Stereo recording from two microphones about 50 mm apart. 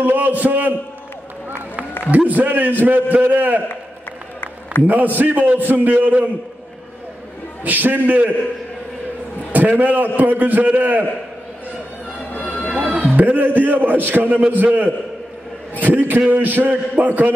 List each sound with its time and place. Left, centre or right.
0.0 s a man's voice: right
2.0 s a man's voice: right
4.8 s a man's voice: right
7.6 s a man's voice: right
9.5 s a man's voice: right
12.3 s run: left
12.9 s a sound: right
13.2 s a man's voice: right